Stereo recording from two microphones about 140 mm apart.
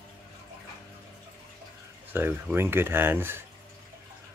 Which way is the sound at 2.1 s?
15° right (ahead or behind).